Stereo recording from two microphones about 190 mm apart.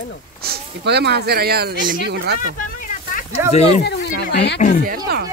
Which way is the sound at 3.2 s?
35° left (ahead or behind).